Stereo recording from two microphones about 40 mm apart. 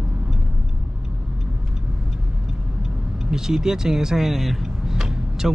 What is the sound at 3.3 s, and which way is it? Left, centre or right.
Speech, centre.